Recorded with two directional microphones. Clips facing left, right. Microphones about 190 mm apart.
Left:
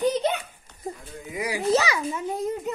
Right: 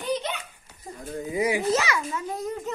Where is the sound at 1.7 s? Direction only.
35° left (ahead or behind).